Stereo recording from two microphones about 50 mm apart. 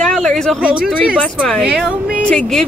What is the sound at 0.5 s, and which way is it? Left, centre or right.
Speech, centre.